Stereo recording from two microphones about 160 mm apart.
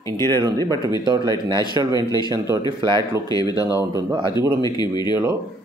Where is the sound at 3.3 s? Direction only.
25° left (ahead or behind).